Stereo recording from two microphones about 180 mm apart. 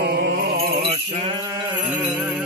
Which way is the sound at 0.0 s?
60° right (ahead or behind).